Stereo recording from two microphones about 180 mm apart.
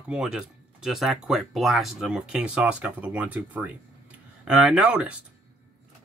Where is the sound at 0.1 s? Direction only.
5° right (ahead or behind).